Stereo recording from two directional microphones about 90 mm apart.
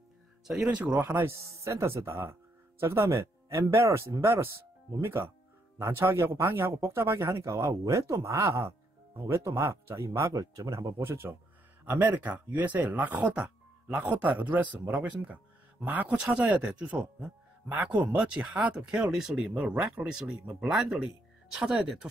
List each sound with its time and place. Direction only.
0.7 s speech: 10° right (ahead or behind)
0.9 s speech: 25° right (ahead or behind)
5.8 s speech: 30° right (ahead or behind)
11.0 s speech: 25° right (ahead or behind); by 22.1 s 5° right (ahead or behind)